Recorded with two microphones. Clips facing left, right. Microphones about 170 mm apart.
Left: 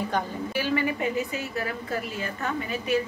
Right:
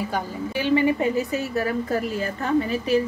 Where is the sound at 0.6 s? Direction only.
25° right (ahead or behind).